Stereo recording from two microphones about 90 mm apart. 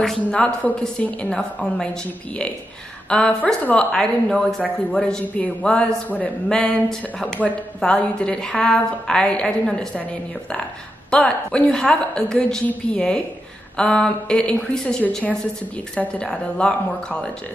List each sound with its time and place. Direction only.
0.2 s a woman's voice: 15° left (ahead or behind)
3.1 s a woman's voice: 10° left (ahead or behind)
11.1 s a woman's voice: 10° left (ahead or behind)